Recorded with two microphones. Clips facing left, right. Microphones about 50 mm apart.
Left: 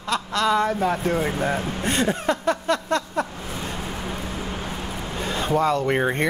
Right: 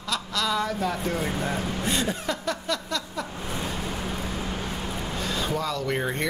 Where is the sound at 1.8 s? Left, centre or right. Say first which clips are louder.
Left 5 dB; left.